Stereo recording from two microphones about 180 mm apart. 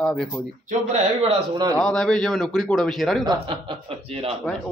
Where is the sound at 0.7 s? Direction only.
40° right (ahead or behind).